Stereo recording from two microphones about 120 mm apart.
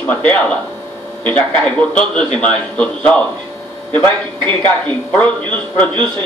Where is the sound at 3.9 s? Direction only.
40° right (ahead or behind).